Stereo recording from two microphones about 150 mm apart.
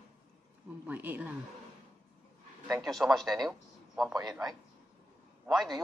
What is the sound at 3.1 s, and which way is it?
A man's voice, 25° right (ahead or behind).